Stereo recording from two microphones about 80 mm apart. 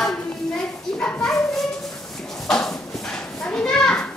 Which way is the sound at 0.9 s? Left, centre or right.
Centre.